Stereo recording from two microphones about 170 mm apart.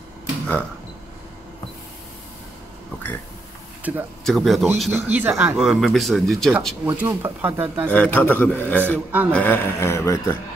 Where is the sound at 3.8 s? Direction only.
10° right (ahead or behind).